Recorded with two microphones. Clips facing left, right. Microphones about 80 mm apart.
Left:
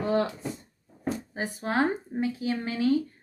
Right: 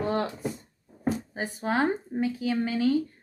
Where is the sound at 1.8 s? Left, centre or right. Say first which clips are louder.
Left 1 dB; left.